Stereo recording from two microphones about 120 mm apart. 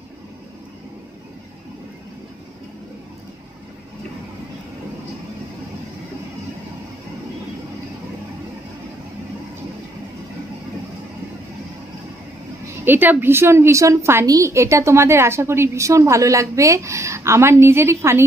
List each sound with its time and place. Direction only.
12.8 s a woman's voice: 15° right (ahead or behind)